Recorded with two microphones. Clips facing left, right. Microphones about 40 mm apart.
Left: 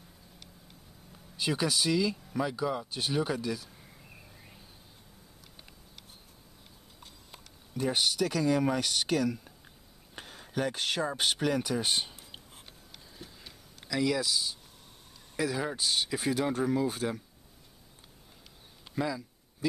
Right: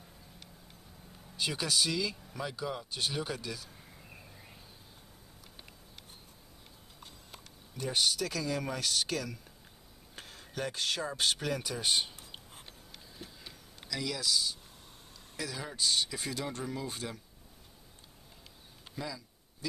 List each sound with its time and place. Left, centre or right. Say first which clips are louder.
1.1 s speech: left 4 dB; centre
3.7 s a sound: even; centre
7.2 s speech: even; centre
13.2 s a sound: right 1 dB; centre
13.8 s speech: left 6 dB; centre
18.9 s speech: left 8 dB; left